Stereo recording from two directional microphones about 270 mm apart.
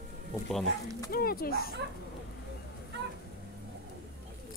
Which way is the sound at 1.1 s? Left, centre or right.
Left.